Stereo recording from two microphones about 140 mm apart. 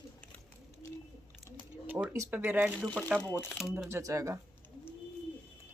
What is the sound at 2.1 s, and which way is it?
Speech, 20° right (ahead or behind).